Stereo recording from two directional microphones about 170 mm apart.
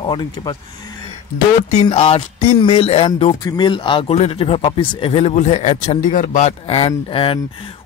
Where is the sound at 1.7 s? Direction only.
40° left (ahead or behind).